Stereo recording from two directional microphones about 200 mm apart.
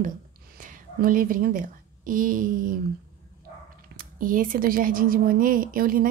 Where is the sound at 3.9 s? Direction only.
45° right (ahead or behind).